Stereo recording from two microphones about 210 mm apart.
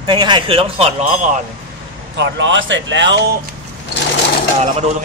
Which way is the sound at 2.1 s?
60° right (ahead or behind).